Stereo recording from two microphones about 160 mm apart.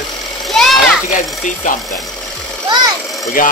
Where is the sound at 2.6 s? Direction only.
25° right (ahead or behind).